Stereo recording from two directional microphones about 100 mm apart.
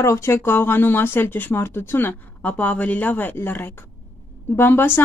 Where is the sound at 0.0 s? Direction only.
25° left (ahead or behind).